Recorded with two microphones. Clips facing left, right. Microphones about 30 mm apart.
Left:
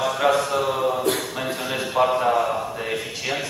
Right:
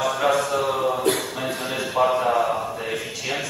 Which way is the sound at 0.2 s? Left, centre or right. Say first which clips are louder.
Left 2 dB; centre.